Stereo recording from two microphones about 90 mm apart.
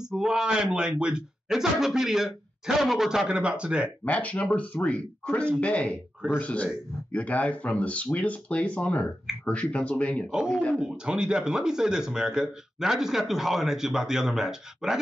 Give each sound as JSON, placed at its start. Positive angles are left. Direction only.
{"t": 0.0, "sound": "speech", "side_deg": -5}
{"t": 4.0, "sound": "a man's voice", "side_deg": 15}
{"t": 11.1, "sound": "a man's voice", "side_deg": -10}